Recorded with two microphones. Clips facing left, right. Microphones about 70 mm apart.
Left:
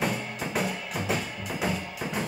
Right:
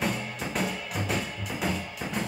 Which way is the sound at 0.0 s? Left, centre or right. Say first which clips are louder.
Left 1 dB; centre.